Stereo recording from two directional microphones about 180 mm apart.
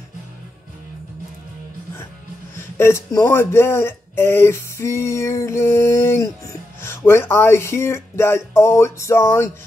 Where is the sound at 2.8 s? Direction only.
15° left (ahead or behind).